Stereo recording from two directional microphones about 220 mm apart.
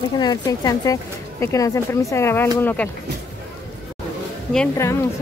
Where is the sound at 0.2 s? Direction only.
15° left (ahead or behind).